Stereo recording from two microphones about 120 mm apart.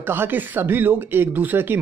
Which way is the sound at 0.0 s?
20° right (ahead or behind).